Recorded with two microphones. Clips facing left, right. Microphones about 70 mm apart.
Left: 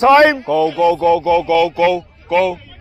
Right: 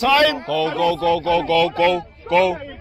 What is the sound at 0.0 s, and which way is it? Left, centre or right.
A man's voice, left.